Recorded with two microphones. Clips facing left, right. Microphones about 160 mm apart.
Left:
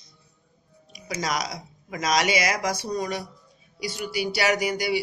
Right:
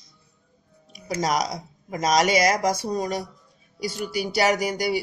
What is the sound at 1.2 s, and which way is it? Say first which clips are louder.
A man's voice: right 5 dB; 45° right (ahead or behind).